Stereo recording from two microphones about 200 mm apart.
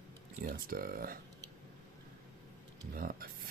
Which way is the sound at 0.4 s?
50° right (ahead or behind).